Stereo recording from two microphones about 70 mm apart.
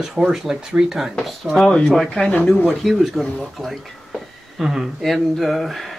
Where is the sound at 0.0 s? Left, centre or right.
Centre.